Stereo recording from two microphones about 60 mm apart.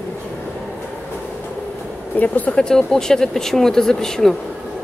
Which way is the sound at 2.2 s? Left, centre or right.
Left.